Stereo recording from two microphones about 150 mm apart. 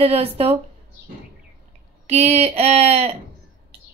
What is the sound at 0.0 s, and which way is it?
Speech, 40° right (ahead or behind).